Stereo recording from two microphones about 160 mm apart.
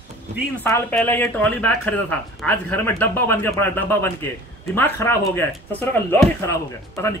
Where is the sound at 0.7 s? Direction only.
15° left (ahead or behind).